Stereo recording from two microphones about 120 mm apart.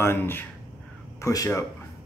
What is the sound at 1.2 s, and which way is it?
Speech, 30° left (ahead or behind).